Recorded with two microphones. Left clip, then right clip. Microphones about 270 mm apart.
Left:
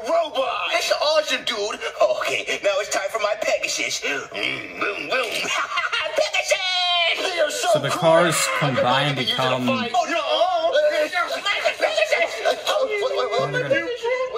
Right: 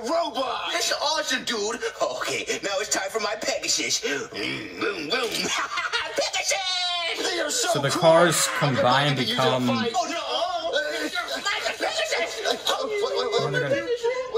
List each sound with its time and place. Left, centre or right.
7.7 s speech: centre